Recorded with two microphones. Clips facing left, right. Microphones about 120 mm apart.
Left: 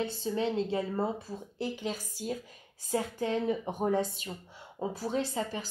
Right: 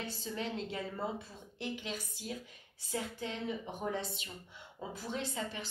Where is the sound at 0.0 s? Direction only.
30° left (ahead or behind).